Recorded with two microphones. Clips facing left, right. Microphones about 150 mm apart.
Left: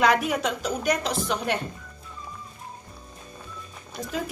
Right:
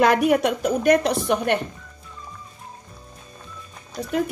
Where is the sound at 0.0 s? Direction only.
55° right (ahead or behind).